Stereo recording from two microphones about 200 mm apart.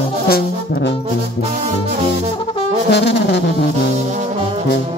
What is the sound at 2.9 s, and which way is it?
Music, 60° left (ahead or behind).